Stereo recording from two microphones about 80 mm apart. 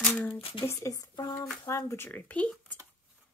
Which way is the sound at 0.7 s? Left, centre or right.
Left.